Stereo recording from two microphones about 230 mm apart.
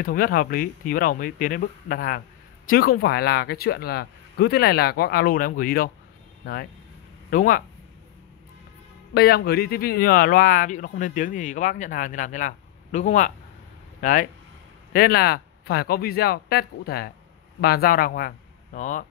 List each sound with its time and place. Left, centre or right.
0.0 s speech: left
9.1 s speech: left